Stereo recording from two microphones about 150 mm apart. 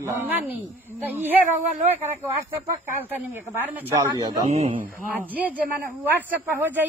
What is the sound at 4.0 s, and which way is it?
Speech, 25° right (ahead or behind).